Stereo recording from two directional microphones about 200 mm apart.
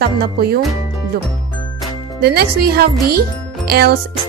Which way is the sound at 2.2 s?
50° right (ahead or behind).